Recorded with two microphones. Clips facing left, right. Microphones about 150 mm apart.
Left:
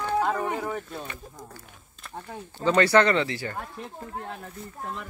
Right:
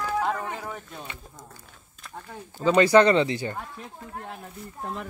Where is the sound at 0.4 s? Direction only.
10° left (ahead or behind).